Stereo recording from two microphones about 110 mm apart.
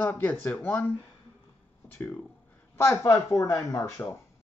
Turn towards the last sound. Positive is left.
turn(degrees=30)  # may be behind; listen again after turning